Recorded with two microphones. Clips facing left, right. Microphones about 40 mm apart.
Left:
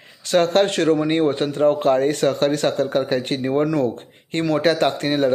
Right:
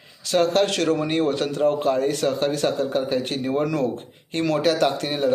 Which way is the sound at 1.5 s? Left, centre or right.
Left.